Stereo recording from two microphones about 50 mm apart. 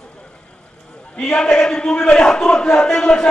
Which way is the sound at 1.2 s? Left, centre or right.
Centre.